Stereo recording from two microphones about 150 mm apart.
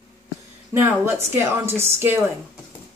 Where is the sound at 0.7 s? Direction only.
15° right (ahead or behind).